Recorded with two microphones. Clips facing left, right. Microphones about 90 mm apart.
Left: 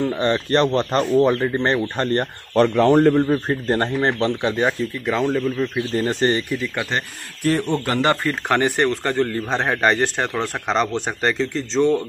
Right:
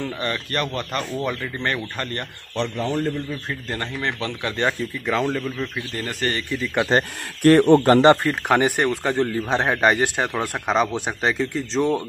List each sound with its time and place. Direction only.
0.1 s speech: 25° left (ahead or behind)
2.7 s a man's voice: 75° left (ahead or behind)
3.4 s speech: 40° left (ahead or behind)
4.6 s speech: 5° left (ahead or behind)
5.6 s speech: 20° left (ahead or behind)
6.9 s speech: 35° right (ahead or behind)
7.4 s a man's voice: 55° right (ahead or behind)
7.8 s speech: 30° right (ahead or behind)
8.3 s a man's voice: 10° right (ahead or behind)